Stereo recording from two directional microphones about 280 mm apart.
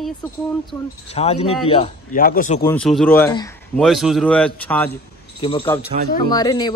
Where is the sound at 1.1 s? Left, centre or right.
Left.